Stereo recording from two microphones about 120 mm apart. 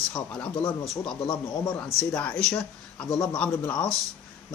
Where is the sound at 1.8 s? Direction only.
15° left (ahead or behind).